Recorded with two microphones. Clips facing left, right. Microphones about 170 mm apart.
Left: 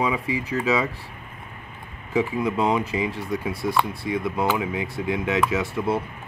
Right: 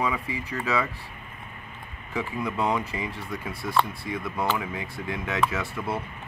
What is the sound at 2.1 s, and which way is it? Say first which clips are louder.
Speech: left 6 dB; 20° left (ahead or behind).